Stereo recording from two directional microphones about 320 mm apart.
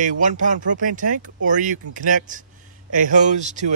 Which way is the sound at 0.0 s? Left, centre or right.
Right.